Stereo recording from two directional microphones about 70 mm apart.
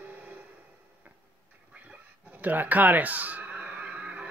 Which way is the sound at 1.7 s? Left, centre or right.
Right.